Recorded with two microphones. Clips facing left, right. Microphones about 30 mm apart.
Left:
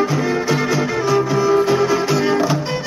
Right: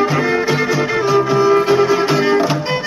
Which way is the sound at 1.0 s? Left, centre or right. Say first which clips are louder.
Right 4 dB; centre.